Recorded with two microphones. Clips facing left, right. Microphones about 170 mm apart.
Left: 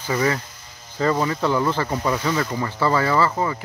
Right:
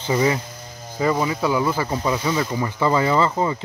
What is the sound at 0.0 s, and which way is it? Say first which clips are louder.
Speech: right 2 dB; 20° right (ahead or behind).